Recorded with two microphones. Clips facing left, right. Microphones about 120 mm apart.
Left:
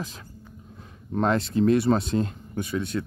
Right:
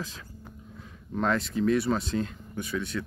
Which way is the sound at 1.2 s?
25° left (ahead or behind).